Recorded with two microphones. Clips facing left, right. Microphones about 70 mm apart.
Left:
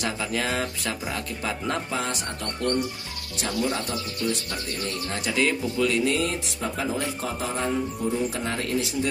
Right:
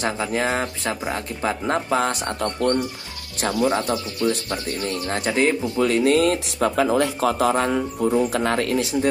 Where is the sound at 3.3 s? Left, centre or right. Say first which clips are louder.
Right 6 dB; right.